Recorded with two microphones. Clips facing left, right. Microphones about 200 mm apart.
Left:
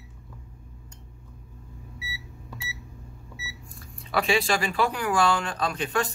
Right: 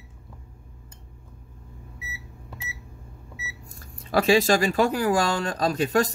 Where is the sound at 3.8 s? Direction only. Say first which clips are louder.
Right 4 dB; 45° right (ahead or behind).